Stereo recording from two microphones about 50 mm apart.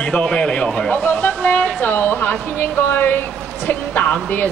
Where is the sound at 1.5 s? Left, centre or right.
Left.